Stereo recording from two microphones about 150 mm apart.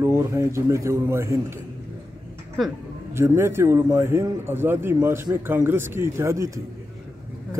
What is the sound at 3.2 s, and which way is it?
A man's voice, 15° right (ahead or behind).